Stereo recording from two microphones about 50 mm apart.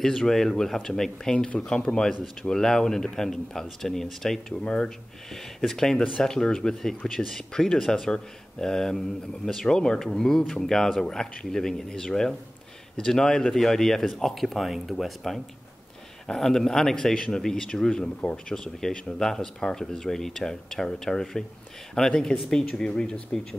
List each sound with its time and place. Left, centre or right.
0.0 s speech: centre; by 2.0 s left
2.5 s speech: centre
4.6 s speech: centre
5.3 s speech: centre